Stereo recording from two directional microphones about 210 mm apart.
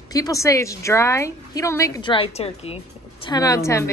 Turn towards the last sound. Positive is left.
turn(degrees=15)  # may be behind; listen again after turning